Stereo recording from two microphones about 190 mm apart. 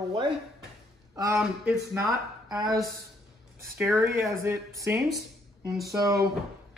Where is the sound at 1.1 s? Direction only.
15° right (ahead or behind).